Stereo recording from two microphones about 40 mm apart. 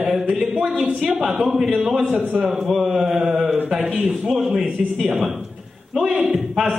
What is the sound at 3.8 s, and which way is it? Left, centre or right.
Speech, right.